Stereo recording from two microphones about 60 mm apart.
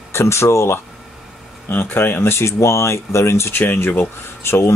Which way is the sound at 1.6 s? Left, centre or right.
Left.